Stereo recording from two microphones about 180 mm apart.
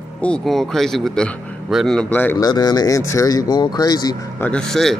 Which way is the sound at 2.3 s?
25° left (ahead or behind).